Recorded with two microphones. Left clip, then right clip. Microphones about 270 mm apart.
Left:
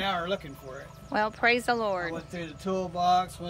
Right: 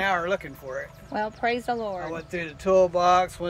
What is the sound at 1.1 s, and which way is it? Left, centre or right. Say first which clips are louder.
Speech: left 2 dB; centre.